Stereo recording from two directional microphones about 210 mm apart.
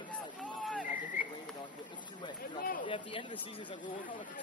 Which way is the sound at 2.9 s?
25° left (ahead or behind).